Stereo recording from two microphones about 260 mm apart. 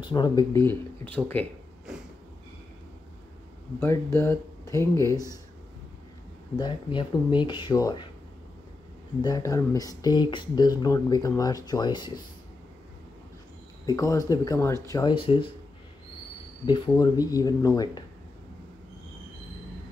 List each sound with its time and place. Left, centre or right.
0.0 s speech: centre
3.8 s speech: centre
6.6 s speech: centre
9.2 s speech: centre
13.8 s speech: centre
16.6 s speech: centre